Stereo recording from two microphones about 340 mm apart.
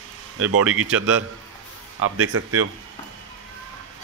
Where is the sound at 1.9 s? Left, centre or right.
Right.